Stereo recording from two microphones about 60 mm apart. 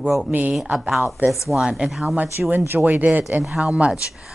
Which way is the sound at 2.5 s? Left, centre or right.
Right.